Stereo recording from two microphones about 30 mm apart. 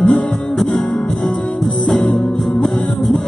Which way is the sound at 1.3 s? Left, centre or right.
Left.